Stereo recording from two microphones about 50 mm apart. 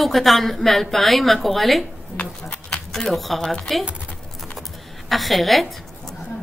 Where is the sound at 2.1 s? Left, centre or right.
Left.